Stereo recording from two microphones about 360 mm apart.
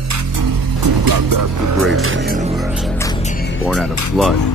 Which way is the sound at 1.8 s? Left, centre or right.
Right.